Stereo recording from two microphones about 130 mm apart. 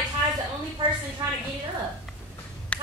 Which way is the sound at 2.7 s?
10° left (ahead or behind).